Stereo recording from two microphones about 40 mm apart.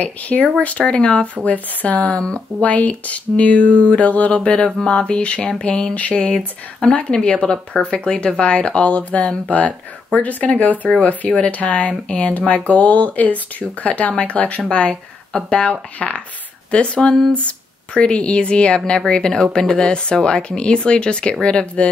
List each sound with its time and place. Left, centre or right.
0.0 s speech: left
1.2 s speech: left
4.8 s speech: left
5.9 s speech: left
6.3 s speech: centre
12.4 s speech: left